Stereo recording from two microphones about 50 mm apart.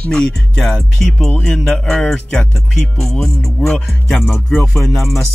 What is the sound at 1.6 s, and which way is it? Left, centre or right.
Speech, left.